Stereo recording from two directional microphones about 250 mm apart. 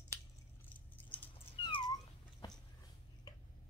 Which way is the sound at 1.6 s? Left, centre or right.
Centre.